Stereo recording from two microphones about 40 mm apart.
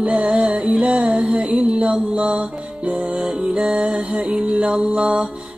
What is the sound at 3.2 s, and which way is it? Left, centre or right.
Music, centre.